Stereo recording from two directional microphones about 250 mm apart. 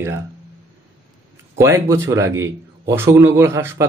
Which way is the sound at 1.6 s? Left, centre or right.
Centre.